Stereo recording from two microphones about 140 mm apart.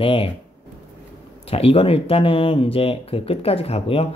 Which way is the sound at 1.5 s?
45° left (ahead or behind).